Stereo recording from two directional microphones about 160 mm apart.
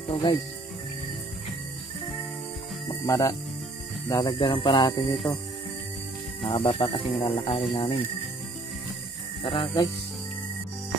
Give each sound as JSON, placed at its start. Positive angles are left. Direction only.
{"t": 0.1, "sound": "speech", "side_deg": 30}
{"t": 3.1, "sound": "speech", "side_deg": 20}
{"t": 6.4, "sound": "speech", "side_deg": 35}
{"t": 9.4, "sound": "speech", "side_deg": 30}